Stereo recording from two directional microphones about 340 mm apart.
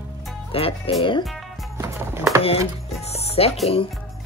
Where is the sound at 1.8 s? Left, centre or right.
Centre.